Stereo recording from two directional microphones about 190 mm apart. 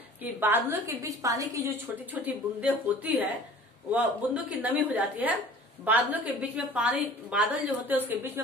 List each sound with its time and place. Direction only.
0.2 s a woman's voice: 10° right (ahead or behind)